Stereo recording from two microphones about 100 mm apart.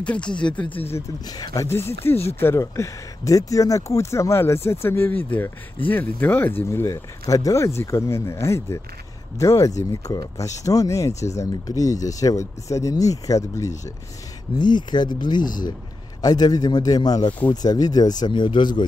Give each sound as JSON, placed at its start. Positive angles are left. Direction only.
{"t": 0.0, "sound": "speech", "side_deg": 10}
{"t": 1.2, "sound": "speech", "side_deg": 40}
{"t": 14.6, "sound": "speech", "side_deg": 50}